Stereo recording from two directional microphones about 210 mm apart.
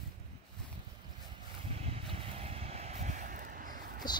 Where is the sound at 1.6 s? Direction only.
30° right (ahead or behind).